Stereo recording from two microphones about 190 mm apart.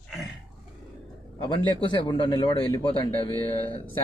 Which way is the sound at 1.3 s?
25° left (ahead or behind).